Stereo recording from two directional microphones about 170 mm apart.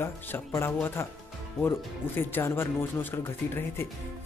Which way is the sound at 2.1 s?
15° left (ahead or behind).